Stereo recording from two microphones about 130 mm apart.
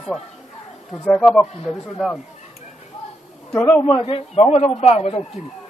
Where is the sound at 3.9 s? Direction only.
40° left (ahead or behind).